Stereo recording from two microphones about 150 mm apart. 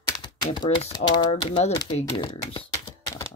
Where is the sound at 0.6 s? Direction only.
40° left (ahead or behind).